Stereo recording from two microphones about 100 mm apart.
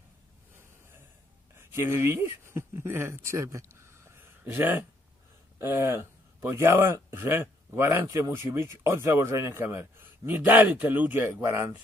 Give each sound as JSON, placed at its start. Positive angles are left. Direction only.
{"t": 1.6, "sound": "speech", "side_deg": -25}